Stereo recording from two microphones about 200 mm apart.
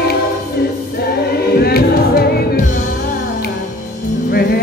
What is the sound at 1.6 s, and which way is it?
Music, 50° left (ahead or behind).